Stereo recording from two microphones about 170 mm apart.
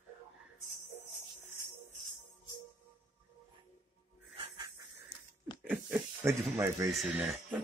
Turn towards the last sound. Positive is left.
turn(degrees=-5)  # may be behind; listen again after turning